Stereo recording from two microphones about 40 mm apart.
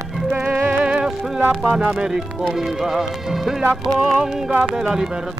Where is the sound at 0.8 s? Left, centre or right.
Right.